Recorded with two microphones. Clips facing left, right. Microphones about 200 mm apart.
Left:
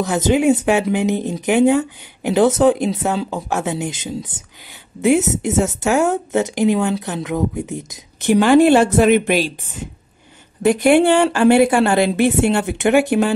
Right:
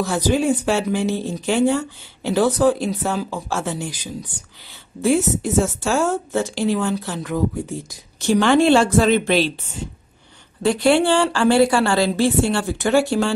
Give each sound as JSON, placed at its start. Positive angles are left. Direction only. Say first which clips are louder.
{"t": 0.0, "sound": "speech", "louder": "left 3 dB", "side_deg": 20}
{"t": 5.8, "sound": "speech", "louder": "left 3 dB", "side_deg": 20}
{"t": 10.6, "sound": "speech", "louder": "left 3 dB", "side_deg": 15}